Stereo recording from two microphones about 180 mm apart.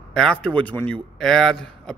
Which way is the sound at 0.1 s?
5° left (ahead or behind).